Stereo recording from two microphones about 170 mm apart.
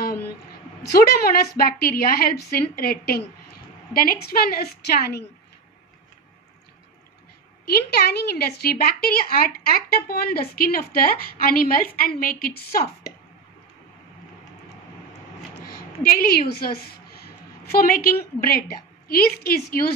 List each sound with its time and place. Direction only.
0.9 s a woman's voice: 65° left (ahead or behind)
7.7 s a woman's voice: 70° left (ahead or behind)
15.6 s a woman's voice: 60° left (ahead or behind)